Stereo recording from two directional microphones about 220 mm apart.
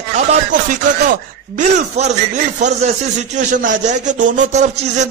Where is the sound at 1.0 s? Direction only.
35° right (ahead or behind).